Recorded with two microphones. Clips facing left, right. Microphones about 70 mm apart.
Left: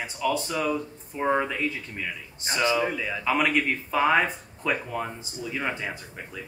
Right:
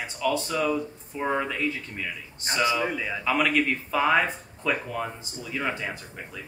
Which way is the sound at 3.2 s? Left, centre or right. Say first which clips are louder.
Even; centre.